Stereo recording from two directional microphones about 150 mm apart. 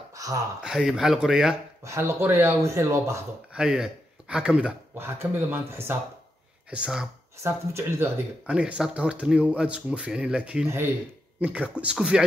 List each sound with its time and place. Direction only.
0.1 s a sound: 25° right (ahead or behind)
0.6 s speech: 5° right (ahead or behind)
1.8 s speech: 20° right (ahead or behind)
3.5 s speech: 5° right (ahead or behind)
5.0 s speech: 15° right (ahead or behind)
7.4 s speech: 20° right (ahead or behind)
8.5 s speech: 5° right (ahead or behind)